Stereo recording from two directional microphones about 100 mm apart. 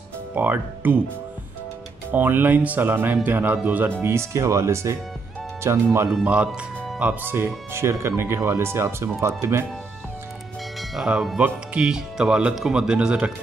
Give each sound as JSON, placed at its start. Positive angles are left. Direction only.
{"t": 0.3, "sound": "speech", "side_deg": -15}
{"t": 2.0, "sound": "speech", "side_deg": -20}
{"t": 6.2, "sound": "speech", "side_deg": -15}
{"t": 10.8, "sound": "speech", "side_deg": -5}